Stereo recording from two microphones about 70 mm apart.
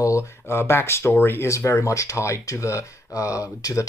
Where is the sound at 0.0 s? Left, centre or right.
Left.